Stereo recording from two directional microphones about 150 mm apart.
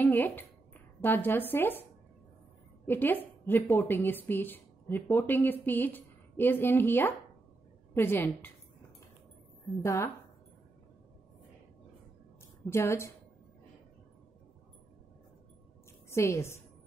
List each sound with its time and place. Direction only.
0.0 s a woman's voice: 10° left (ahead or behind)
2.9 s a woman's voice: 15° left (ahead or behind)
9.8 s speech: 20° left (ahead or behind)
12.6 s a woman's voice: 15° left (ahead or behind)
16.1 s a woman's voice: 20° left (ahead or behind)